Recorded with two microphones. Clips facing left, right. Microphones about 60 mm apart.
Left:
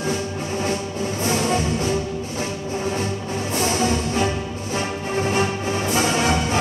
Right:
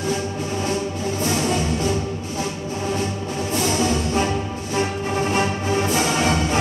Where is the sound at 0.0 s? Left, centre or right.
Left.